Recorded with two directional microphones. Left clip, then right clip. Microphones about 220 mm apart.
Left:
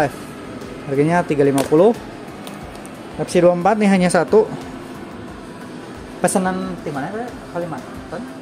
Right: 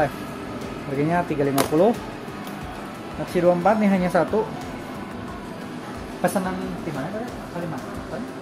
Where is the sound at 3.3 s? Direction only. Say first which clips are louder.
Left 4 dB; 45° left (ahead or behind).